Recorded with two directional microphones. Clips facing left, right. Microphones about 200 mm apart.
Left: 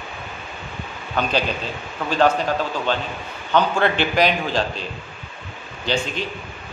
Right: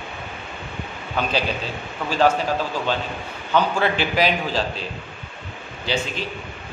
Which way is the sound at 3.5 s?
5° right (ahead or behind).